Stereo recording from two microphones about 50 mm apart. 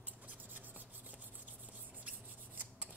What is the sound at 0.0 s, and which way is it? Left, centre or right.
Rub, right.